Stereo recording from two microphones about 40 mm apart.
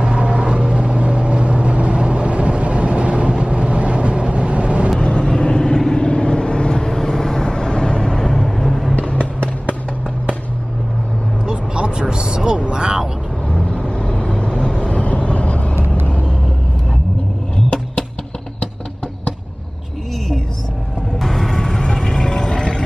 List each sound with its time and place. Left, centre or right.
0.0 s vehicle: right
5.0 s vehicle: left; by 8.9 s centre
8.9 s a sound: left
11.4 s vehicle: right
13.7 s vehicle: left
21.2 s music: centre
21.5 s vehicle: centre